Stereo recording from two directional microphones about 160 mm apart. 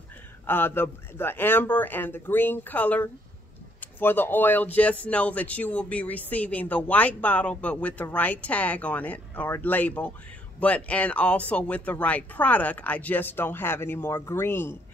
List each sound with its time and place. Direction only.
0.5 s speech: 15° left (ahead or behind)